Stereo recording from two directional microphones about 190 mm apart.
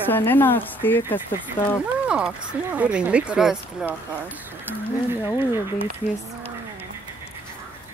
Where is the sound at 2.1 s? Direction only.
5° right (ahead or behind).